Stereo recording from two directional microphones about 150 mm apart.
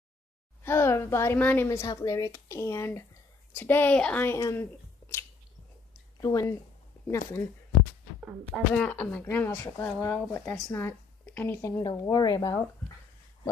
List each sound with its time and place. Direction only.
0.7 s a woman's voice: 15° left (ahead or behind)
6.2 s speech: 25° left (ahead or behind)
8.7 s a woman's voice: 5° left (ahead or behind)
11.8 s speech: 25° left (ahead or behind)